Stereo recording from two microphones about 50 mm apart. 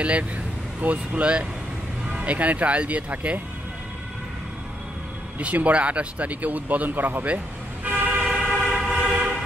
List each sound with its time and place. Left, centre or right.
0.0 s speech: right
5.4 s speech: right
7.8 s vehicle: right
8.5 s train: centre
8.9 s train: right